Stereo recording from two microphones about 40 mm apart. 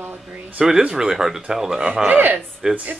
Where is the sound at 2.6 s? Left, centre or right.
Centre.